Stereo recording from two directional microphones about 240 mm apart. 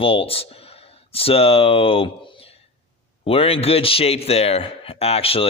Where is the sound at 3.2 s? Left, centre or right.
Left.